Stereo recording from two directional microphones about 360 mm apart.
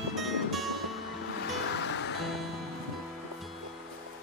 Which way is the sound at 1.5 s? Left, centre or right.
Left.